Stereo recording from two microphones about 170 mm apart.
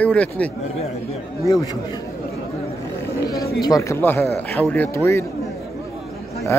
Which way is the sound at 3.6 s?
20° left (ahead or behind).